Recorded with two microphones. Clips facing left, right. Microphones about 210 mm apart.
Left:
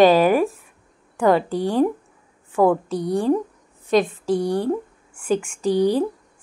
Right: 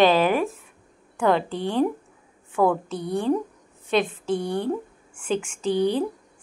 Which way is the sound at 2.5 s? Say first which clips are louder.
Left 4 dB; 10° left (ahead or behind).